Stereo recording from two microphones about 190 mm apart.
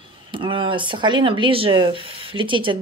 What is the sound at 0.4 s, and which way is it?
Speech, 25° right (ahead or behind).